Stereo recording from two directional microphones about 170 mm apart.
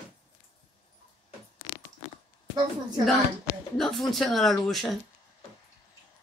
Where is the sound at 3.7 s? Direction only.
Centre (ahead or behind).